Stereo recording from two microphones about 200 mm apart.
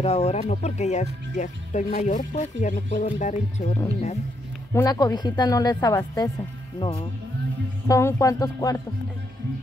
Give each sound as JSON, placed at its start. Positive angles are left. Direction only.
{"t": 0.0, "sound": "speech", "side_deg": 30}
{"t": 4.7, "sound": "a woman's voice", "side_deg": 20}
{"t": 7.9, "sound": "music", "side_deg": 15}